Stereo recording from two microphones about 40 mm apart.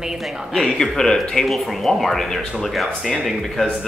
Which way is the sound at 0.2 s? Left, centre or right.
Centre.